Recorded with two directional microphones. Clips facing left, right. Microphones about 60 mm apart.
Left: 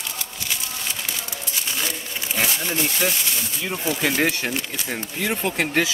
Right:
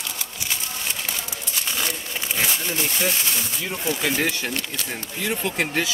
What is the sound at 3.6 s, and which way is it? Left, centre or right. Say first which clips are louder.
Speech: left 2 dB; centre.